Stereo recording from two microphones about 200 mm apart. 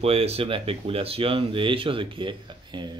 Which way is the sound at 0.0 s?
30° right (ahead or behind).